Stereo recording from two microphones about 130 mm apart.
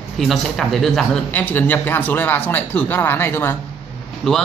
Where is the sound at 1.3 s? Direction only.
15° left (ahead or behind).